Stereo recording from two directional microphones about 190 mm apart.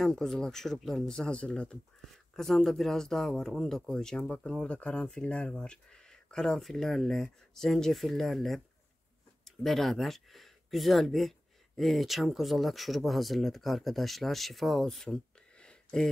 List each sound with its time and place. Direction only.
0.0 s speech: centre (ahead or behind)